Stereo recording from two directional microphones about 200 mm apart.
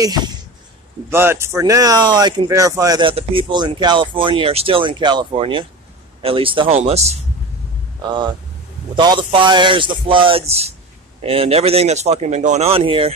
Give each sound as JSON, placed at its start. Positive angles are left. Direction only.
{"t": 0.0, "sound": "speech", "side_deg": -20}
{"t": 8.9, "sound": "speech", "side_deg": -25}